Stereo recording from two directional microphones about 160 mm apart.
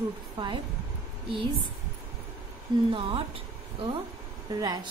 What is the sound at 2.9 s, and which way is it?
A woman's voice, 35° right (ahead or behind).